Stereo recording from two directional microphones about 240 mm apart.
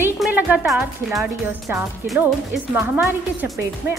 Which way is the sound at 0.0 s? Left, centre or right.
Centre.